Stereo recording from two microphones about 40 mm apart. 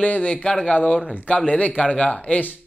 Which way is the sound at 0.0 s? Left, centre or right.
Left.